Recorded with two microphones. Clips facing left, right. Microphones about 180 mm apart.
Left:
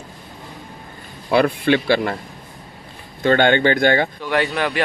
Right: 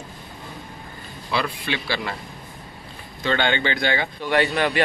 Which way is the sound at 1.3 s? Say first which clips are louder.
Left 10 dB; 55° left (ahead or behind).